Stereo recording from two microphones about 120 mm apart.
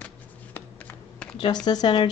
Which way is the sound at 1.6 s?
35° left (ahead or behind).